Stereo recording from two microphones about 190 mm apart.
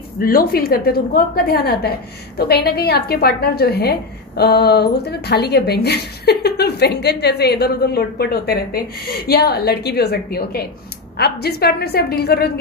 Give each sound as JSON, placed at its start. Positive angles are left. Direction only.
{"t": 0.2, "sound": "a woman's voice", "side_deg": 50}